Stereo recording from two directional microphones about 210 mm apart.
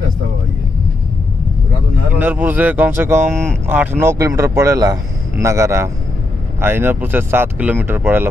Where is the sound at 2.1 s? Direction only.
10° right (ahead or behind).